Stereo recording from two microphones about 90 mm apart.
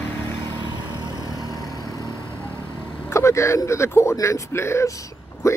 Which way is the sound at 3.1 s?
30° left (ahead or behind).